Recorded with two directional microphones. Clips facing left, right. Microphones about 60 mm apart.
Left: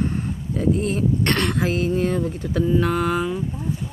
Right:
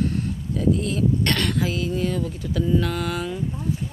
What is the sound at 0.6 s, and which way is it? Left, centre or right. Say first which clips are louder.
Speech: left 1 dB; left.